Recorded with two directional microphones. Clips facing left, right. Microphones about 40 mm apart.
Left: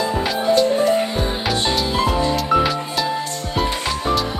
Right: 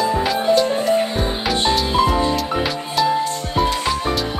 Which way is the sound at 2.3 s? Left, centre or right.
Centre.